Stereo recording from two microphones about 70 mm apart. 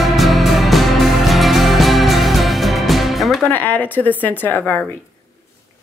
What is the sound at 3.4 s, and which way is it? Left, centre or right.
Speech, left.